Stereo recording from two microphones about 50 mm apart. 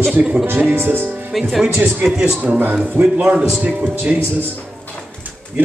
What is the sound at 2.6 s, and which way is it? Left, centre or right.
Speech, right.